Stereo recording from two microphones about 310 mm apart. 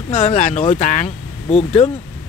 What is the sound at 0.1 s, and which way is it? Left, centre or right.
Speech, left.